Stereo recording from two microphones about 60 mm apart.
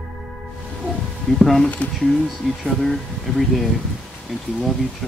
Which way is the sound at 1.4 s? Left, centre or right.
Centre.